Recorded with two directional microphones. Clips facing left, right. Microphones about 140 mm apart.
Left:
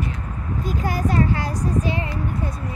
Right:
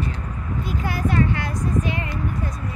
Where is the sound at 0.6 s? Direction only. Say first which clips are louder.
Left 2 dB; 40° left (ahead or behind).